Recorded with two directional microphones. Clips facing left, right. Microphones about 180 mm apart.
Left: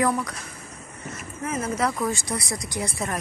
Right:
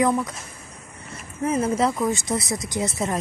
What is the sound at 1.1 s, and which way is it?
Speech, 30° right (ahead or behind).